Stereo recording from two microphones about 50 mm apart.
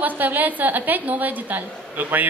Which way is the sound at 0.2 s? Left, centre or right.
Right.